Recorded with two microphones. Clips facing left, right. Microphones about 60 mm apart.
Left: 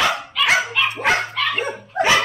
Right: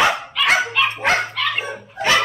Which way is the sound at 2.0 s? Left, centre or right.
Left.